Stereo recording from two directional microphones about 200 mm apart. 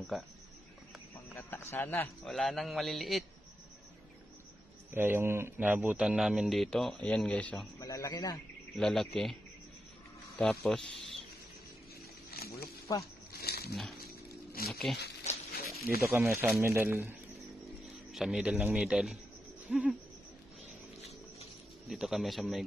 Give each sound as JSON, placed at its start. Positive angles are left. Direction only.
{"t": 0.1, "sound": "a man's voice", "side_deg": 0}
{"t": 1.3, "sound": "a man's voice", "side_deg": 10}
{"t": 4.9, "sound": "a man's voice", "side_deg": -10}
{"t": 7.8, "sound": "a man's voice", "side_deg": 15}
{"t": 8.7, "sound": "a man's voice", "side_deg": 0}
{"t": 12.4, "sound": "snake", "side_deg": 50}
{"t": 14.3, "sound": "a sound", "side_deg": 50}
{"t": 14.7, "sound": "a man's voice", "side_deg": 0}
{"t": 15.5, "sound": "a sound", "side_deg": 50}
{"t": 16.0, "sound": "a man's voice", "side_deg": -10}
{"t": 21.8, "sound": "a man's voice", "side_deg": 0}